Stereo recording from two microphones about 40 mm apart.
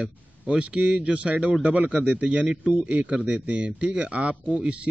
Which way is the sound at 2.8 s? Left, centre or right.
Right.